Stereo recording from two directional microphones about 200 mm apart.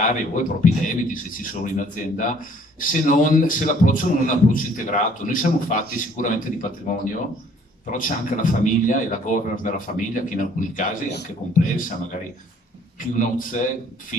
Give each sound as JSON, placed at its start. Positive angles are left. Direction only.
{"t": 0.0, "sound": "a man's voice", "side_deg": 40}
{"t": 11.1, "sound": "a man's voice", "side_deg": 55}
{"t": 13.1, "sound": "a man's voice", "side_deg": 40}